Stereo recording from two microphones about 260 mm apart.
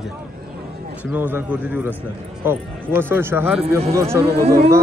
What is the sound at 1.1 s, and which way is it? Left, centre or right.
Speech, centre.